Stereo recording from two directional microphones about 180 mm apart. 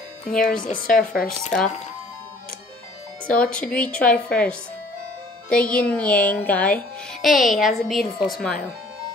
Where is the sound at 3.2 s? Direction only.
5° left (ahead or behind).